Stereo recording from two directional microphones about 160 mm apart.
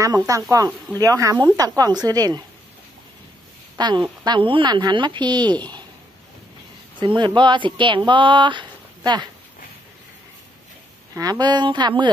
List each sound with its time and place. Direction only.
0.0 s speech: 20° right (ahead or behind)
3.7 s speech: 30° right (ahead or behind)
7.0 s speech: 30° right (ahead or behind)
11.1 s speech: 25° right (ahead or behind)